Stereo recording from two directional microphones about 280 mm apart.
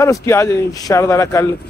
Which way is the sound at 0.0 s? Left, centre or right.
Centre.